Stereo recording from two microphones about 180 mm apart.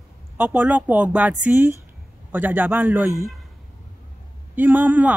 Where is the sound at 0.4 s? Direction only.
10° right (ahead or behind).